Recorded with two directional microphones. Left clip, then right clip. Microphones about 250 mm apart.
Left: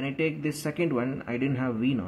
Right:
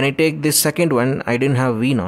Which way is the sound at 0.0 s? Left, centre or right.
Right.